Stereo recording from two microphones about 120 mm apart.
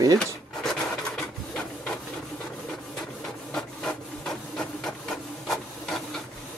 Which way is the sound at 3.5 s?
5° left (ahead or behind).